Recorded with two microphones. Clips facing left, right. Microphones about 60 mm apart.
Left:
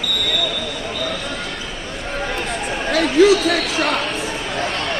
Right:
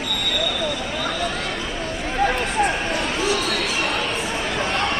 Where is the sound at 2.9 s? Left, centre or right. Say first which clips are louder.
Left 9 dB; left.